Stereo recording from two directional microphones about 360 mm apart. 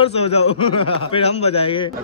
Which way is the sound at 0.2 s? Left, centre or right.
Centre.